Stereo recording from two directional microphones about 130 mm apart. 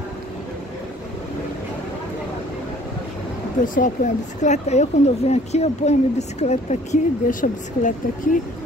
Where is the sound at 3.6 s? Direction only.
90° left.